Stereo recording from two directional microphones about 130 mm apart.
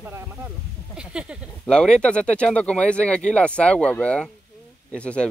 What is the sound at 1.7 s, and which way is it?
Speech, 5° left (ahead or behind).